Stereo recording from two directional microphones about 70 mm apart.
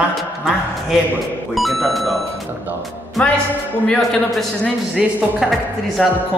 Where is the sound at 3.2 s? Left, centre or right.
Centre.